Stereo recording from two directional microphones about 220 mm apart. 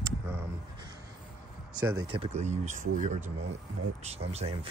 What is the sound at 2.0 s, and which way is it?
Speech, 25° right (ahead or behind).